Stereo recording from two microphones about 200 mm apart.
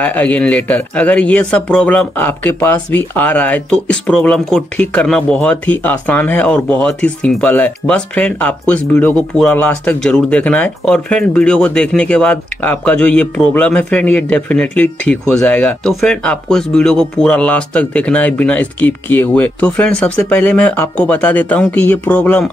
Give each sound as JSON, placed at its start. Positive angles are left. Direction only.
{"t": 0.0, "sound": "speech", "side_deg": 10}